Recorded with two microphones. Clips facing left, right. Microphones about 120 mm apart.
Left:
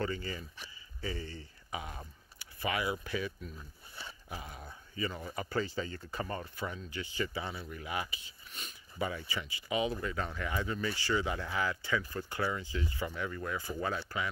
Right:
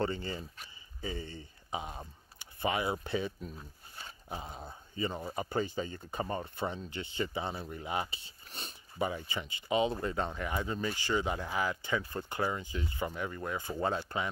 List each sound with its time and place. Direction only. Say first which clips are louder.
0.0 s speech: right 2 dB; 30° right (ahead or behind)